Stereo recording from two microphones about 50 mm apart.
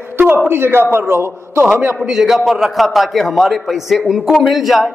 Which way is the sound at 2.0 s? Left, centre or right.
Centre.